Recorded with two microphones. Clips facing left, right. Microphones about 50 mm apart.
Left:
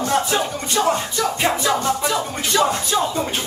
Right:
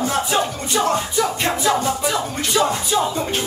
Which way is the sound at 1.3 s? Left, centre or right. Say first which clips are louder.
Even; centre.